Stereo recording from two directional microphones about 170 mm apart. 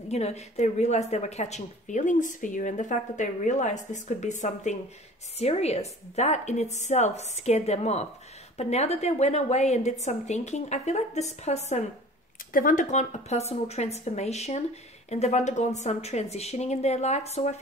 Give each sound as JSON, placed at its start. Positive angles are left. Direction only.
{"t": 0.1, "sound": "a woman's voice", "side_deg": 40}
{"t": 12.5, "sound": "a woman's voice", "side_deg": 50}